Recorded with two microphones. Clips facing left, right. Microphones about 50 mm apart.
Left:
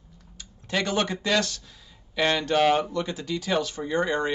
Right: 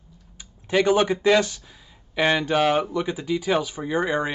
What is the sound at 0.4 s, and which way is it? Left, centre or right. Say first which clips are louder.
A man's voice: right 6 dB; centre.